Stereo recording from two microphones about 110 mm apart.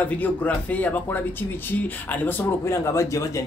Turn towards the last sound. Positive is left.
turn(degrees=30)  # may be behind; listen again after turning